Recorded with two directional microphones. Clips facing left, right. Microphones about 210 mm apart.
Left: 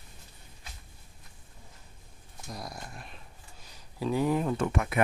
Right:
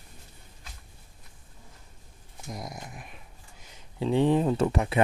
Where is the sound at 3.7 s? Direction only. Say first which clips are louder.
Right 3 dB; 25° right (ahead or behind).